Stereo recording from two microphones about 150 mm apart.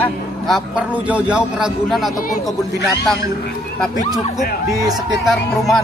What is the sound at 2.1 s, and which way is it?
Speech, 65° left (ahead or behind).